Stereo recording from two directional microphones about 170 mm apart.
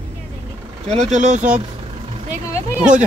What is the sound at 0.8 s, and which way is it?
Speech, 45° right (ahead or behind).